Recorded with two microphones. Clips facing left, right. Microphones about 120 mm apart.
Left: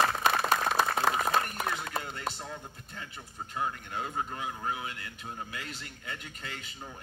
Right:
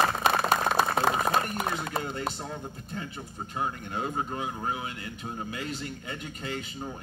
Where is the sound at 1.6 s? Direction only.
25° right (ahead or behind).